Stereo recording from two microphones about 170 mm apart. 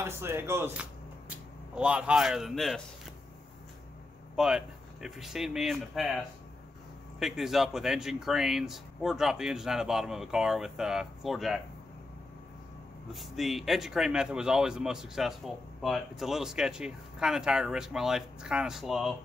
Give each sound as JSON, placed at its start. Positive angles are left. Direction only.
{"t": 0.0, "sound": "speech", "side_deg": -15}
{"t": 4.4, "sound": "speech", "side_deg": -5}
{"t": 13.1, "sound": "speech", "side_deg": 0}